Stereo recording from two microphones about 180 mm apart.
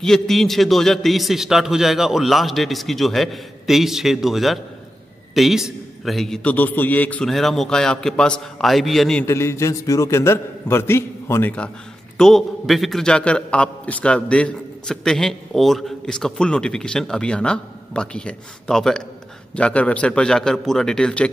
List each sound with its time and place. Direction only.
0.0 s a man's voice: centre (ahead or behind)
9.2 s a man's voice: 15° left (ahead or behind)